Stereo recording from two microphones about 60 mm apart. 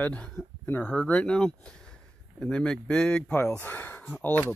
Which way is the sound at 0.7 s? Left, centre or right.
Left.